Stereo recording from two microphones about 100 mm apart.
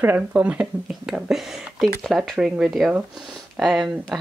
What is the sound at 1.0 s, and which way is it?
Speech, 5° right (ahead or behind).